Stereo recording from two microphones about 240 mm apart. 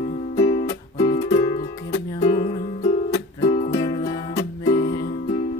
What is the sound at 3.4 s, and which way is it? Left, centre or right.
Music, left.